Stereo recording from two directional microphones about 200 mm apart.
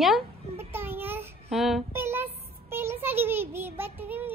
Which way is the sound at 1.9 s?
10° right (ahead or behind).